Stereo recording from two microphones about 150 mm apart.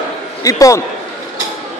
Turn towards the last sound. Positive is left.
turn(degrees=20)  # may be behind; listen again after turning